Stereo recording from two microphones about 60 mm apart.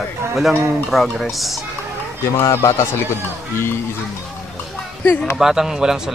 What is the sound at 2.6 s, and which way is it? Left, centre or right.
Speech, left.